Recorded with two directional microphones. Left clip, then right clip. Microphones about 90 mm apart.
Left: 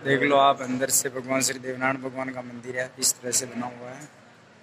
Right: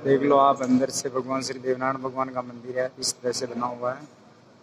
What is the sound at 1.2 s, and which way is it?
Speech, 5° right (ahead or behind).